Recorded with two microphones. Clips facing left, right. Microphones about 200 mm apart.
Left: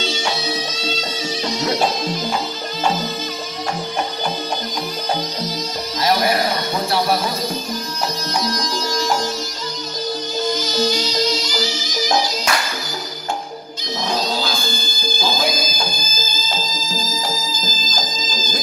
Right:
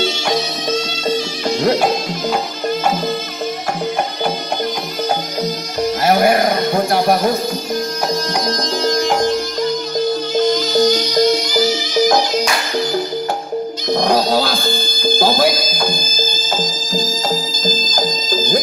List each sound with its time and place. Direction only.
6.0 s a sound: 50° right (ahead or behind)
8.5 s music: 55° right (ahead or behind)
10.3 s music: 60° right (ahead or behind)
13.9 s music: 55° right (ahead or behind)